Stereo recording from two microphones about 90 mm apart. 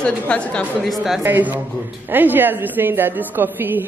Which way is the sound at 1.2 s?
20° right (ahead or behind).